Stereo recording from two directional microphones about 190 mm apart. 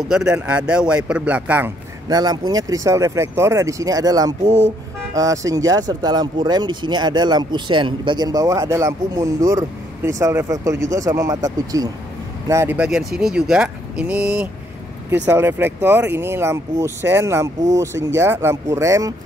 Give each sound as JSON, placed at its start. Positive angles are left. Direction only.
{"t": 0.1, "sound": "speech", "side_deg": -5}
{"t": 2.0, "sound": "speech", "side_deg": -20}